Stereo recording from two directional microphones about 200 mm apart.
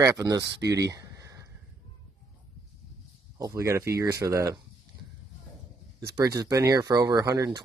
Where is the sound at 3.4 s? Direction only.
15° right (ahead or behind).